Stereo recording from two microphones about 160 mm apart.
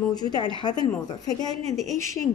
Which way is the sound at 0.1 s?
25° left (ahead or behind).